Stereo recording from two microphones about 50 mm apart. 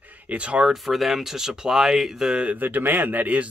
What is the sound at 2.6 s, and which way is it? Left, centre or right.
Speech, right.